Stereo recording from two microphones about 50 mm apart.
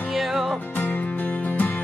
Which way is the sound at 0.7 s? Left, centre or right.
Left.